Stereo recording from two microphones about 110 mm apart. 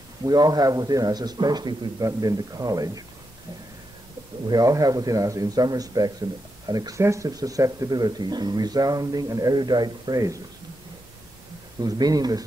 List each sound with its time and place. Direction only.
0.2 s speech: 35° right (ahead or behind)
4.5 s speech: 35° right (ahead or behind)
11.8 s speech: 35° right (ahead or behind)